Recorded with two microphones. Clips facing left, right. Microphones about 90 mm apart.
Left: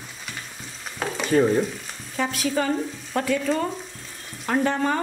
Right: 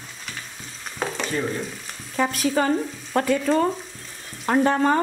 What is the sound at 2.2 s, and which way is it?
Frying, 45° right (ahead or behind).